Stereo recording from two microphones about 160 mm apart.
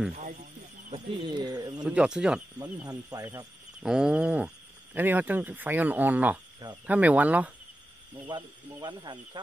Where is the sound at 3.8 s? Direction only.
5° right (ahead or behind).